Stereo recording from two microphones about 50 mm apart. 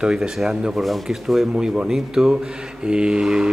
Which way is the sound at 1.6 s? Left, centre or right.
Centre.